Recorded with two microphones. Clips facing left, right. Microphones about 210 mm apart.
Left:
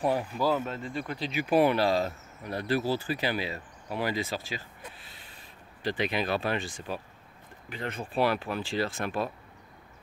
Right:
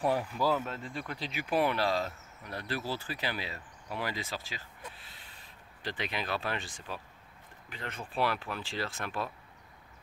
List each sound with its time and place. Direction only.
0.0 s speech: 15° left (ahead or behind)
0.7 s speech: centre (ahead or behind)
2.0 s speech: 35° left (ahead or behind)
2.9 s speech: 5° left (ahead or behind)
5.9 s speech: 15° left (ahead or behind)
7.7 s speech: 15° left (ahead or behind)